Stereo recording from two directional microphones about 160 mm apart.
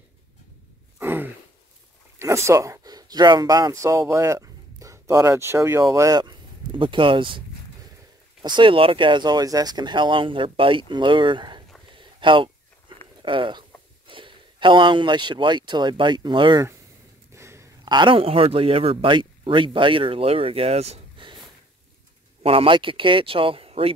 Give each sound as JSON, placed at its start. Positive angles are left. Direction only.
{"t": 0.9, "sound": "a sound", "side_deg": -15}
{"t": 2.1, "sound": "speech", "side_deg": -15}
{"t": 11.9, "sound": "a sound", "side_deg": -30}
{"t": 13.2, "sound": "speech", "side_deg": -30}
{"t": 17.3, "sound": "a man's voice", "side_deg": -20}
{"t": 22.4, "sound": "speech", "side_deg": -35}